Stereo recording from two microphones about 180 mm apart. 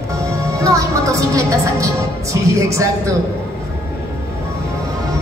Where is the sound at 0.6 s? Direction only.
15° right (ahead or behind).